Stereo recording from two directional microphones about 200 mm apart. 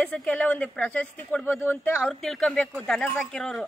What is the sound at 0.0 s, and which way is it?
Speech, 5° left (ahead or behind).